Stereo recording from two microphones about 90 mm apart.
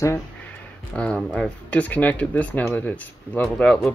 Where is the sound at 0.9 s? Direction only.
15° left (ahead or behind).